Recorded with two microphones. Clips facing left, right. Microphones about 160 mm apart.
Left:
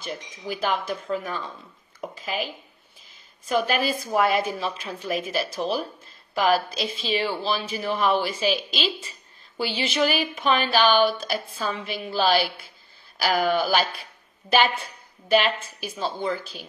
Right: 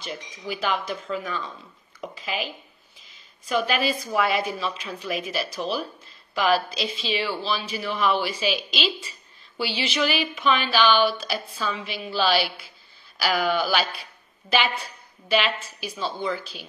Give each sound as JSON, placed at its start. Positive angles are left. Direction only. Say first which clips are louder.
{"t": 0.0, "sound": "a woman's voice", "louder": "left 1 dB", "side_deg": 50}
{"t": 2.0, "sound": "a sound", "louder": "left 1 dB", "side_deg": 45}
{"t": 3.5, "sound": "a woman's voice", "louder": "left 1 dB", "side_deg": 50}
{"t": 9.6, "sound": "a woman's voice", "louder": "left 2 dB", "side_deg": 50}
{"t": 15.2, "sound": "a woman's voice", "louder": "left 3 dB", "side_deg": 50}